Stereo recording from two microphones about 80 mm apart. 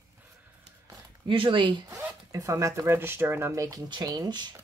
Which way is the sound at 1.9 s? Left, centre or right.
Right.